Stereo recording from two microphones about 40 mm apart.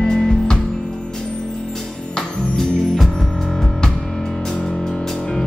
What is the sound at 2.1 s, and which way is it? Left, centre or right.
Music, centre.